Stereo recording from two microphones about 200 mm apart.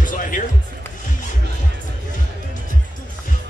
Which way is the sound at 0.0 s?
40° left (ahead or behind).